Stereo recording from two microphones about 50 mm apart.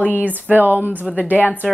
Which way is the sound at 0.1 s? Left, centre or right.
Right.